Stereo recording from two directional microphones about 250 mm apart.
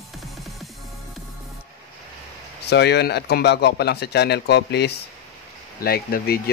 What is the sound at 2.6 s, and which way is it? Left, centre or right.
Speech, left.